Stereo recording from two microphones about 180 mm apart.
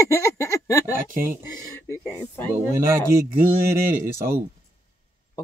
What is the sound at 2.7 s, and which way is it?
Speech, 15° right (ahead or behind).